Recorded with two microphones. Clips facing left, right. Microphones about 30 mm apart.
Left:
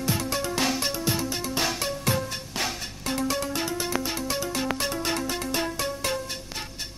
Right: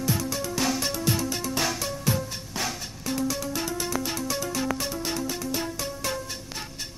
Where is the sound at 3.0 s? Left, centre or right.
Left.